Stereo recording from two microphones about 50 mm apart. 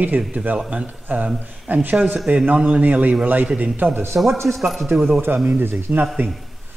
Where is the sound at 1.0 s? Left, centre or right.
Right.